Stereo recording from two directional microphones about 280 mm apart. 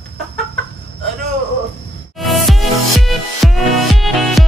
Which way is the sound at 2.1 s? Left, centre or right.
Centre.